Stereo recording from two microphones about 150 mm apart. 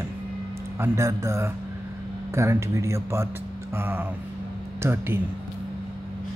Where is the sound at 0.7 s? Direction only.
20° right (ahead or behind).